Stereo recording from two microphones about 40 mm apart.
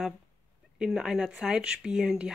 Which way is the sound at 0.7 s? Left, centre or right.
Centre.